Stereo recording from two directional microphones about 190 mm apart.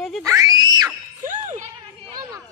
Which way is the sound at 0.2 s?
20° right (ahead or behind).